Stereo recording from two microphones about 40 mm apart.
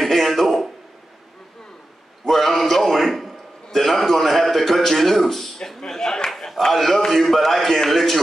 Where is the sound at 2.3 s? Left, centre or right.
Centre.